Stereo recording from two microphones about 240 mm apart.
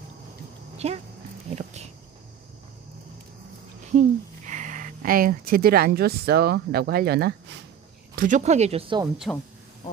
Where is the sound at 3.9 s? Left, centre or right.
Right.